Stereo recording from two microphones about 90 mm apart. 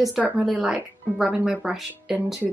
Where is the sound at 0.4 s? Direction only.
5° right (ahead or behind).